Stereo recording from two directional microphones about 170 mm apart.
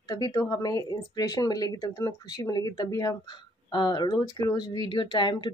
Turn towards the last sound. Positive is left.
turn(degrees=25)  # may be behind; listen again after turning